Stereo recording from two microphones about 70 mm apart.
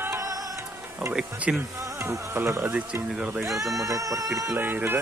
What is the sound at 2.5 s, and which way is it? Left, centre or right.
Music, right.